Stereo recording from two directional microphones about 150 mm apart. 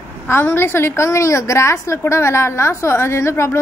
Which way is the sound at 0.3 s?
15° left (ahead or behind).